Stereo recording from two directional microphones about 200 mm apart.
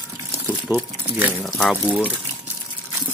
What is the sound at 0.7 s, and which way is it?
Speech, 10° right (ahead or behind).